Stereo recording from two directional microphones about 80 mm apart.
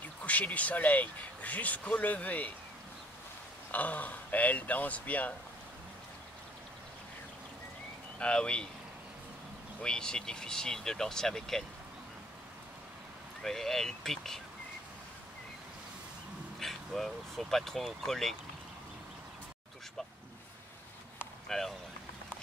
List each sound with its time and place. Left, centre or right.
0.2 s speech: centre
3.7 s speech: left
8.2 s speech: centre
9.8 s speech: centre
13.4 s speech: centre
16.5 s speech: centre
21.5 s speech: centre